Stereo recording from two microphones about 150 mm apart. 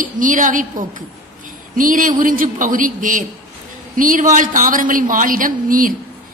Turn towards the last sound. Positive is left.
turn(degrees=-65)  # may be behind; listen again after turning